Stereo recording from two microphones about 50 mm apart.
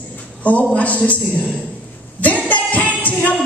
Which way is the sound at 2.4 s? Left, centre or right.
Left.